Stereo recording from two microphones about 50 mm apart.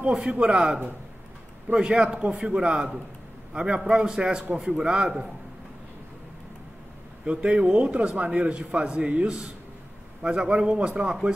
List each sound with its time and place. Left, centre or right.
0.0 s a man's voice: right
7.2 s a man's voice: right